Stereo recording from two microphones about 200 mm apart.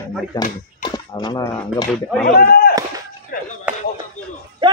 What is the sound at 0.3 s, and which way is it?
Speech, 20° left (ahead or behind).